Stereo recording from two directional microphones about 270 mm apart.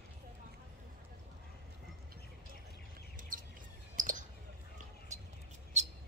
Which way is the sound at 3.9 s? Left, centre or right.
Right.